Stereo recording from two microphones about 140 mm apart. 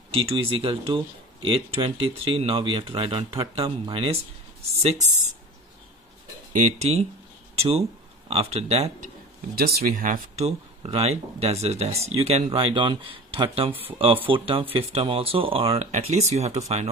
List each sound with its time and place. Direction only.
0.1 s speech: 40° right (ahead or behind)
6.5 s speech: 55° right (ahead or behind)
9.6 s speech: 90° right
10.3 s speech: 45° right (ahead or behind)